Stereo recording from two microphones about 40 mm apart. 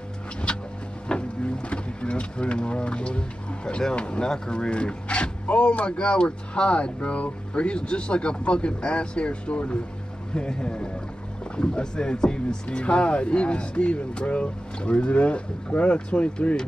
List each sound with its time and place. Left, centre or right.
0.5 s vehicle: left
1.0 s boat: left
3.9 s speech: left